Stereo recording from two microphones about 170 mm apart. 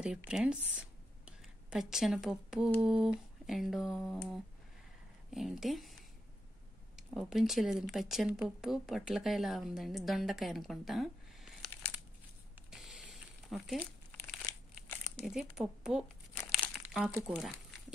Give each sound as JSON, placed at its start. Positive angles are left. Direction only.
{"t": 0.0, "sound": "speech", "side_deg": -5}
{"t": 5.3, "sound": "speech", "side_deg": 0}
{"t": 7.0, "sound": "speech", "side_deg": -5}
{"t": 12.7, "sound": "a sound", "side_deg": -5}
{"t": 14.5, "sound": "crumpling", "side_deg": 20}
{"t": 15.1, "sound": "speech", "side_deg": 0}
{"t": 16.5, "sound": "crumpling", "side_deg": 0}
{"t": 17.1, "sound": "speech", "side_deg": -5}